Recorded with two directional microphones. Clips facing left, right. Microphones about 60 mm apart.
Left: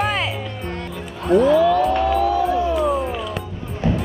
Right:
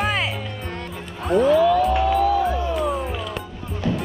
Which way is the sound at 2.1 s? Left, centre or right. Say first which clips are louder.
Even; left.